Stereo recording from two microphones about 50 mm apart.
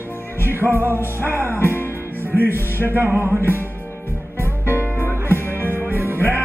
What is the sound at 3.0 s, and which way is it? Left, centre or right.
Music, right.